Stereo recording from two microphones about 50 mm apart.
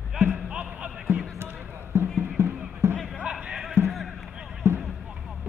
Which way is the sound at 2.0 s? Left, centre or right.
Right.